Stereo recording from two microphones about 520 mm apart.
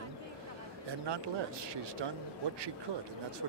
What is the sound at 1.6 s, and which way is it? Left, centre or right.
Speech, right.